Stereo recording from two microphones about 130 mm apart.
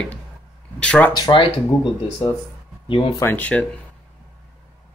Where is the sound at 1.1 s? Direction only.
35° left (ahead or behind).